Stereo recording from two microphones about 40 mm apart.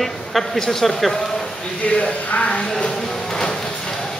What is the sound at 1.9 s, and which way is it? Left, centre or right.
Speech, left.